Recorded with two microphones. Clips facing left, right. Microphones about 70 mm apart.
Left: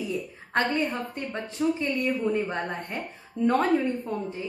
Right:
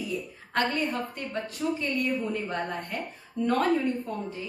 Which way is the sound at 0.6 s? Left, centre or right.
Left.